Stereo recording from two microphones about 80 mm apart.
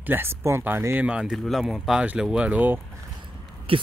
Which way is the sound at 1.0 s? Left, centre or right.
Centre.